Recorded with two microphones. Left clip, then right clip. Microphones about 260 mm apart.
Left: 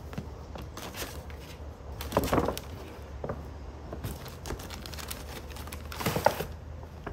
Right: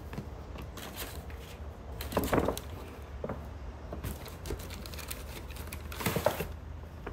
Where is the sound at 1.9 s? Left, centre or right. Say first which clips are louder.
Left 4 dB; left.